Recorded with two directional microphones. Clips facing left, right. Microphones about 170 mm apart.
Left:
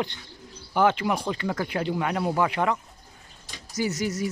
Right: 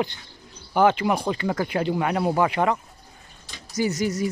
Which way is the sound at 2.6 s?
30° right (ahead or behind).